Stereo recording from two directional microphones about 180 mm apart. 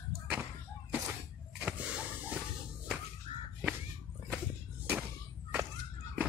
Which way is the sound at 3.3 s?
35° left (ahead or behind).